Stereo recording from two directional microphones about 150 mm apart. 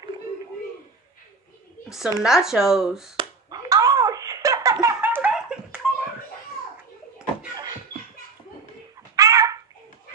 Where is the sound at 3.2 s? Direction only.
25° right (ahead or behind).